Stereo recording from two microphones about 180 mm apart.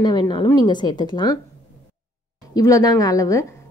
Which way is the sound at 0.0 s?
25° left (ahead or behind).